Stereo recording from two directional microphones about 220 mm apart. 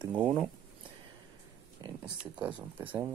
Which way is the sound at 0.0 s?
20° right (ahead or behind).